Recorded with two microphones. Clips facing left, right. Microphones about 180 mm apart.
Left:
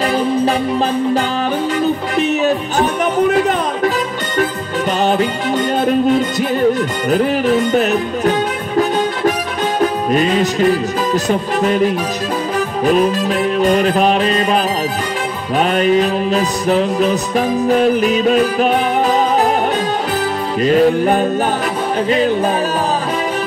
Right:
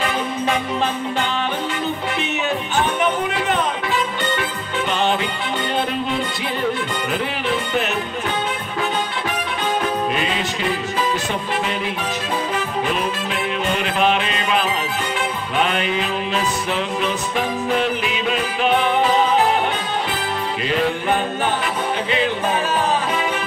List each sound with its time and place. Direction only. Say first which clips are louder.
2.1 s music: left 8 dB; 40° left (ahead or behind)
5.0 s music: left 6 dB; 40° left (ahead or behind)
15.6 s music: left 9 dB; 40° left (ahead or behind)
20.6 s music: left 10 dB; 40° left (ahead or behind)